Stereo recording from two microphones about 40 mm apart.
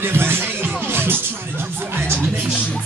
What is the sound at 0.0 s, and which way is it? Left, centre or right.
Music, right.